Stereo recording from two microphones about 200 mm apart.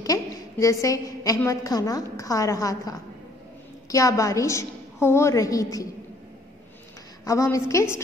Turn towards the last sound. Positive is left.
turn(degrees=15)  # may be behind; listen again after turning